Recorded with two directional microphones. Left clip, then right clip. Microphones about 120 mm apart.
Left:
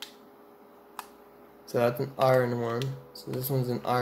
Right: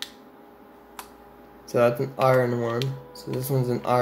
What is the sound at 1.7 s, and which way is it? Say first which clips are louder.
Speech: right 6 dB; 25° left (ahead or behind).